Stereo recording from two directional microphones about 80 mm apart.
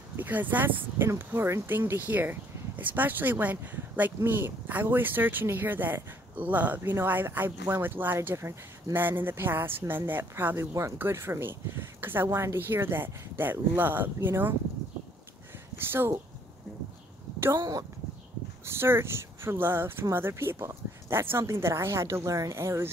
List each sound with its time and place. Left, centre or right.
0.1 s speech: right
15.9 s speech: right
17.6 s speech: right
18.7 s speech: right